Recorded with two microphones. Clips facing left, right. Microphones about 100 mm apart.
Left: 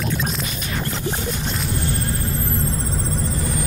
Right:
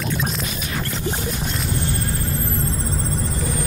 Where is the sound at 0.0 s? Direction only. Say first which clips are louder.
Even; centre (ahead or behind).